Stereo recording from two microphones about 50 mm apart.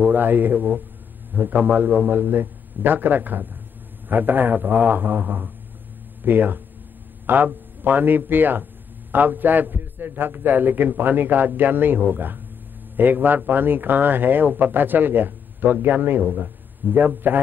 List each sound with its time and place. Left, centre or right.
0.0 s a man's voice: right